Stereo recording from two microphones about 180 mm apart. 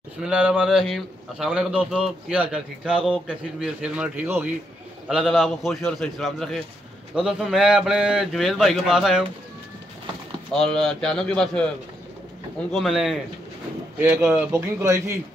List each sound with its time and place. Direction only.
0.2 s a man's voice: 5° right (ahead or behind)
10.5 s a man's voice: 5° left (ahead or behind)
12.7 s a man's voice: centre (ahead or behind)